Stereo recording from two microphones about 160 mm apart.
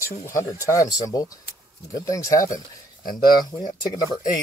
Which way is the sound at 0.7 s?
20° left (ahead or behind).